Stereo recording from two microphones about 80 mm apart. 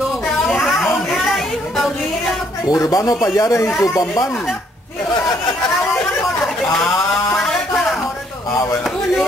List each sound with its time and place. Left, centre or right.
1.2 s music: centre
2.6 s speech: left